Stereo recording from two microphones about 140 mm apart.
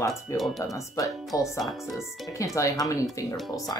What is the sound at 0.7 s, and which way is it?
Speech, 25° left (ahead or behind).